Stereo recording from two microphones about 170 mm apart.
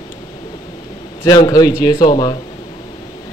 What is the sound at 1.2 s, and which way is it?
Speech, 20° left (ahead or behind).